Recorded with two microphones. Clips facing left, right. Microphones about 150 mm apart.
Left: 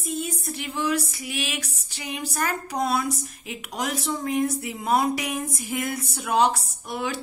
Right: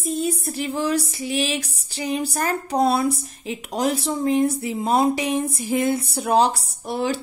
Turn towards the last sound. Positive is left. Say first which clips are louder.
# right 6 dB
turn(degrees=-30)  # may be behind; listen again after turning